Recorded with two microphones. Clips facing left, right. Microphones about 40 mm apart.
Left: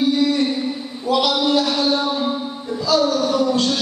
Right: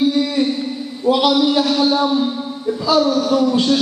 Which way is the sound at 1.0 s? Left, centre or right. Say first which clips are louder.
Right 4 dB; centre.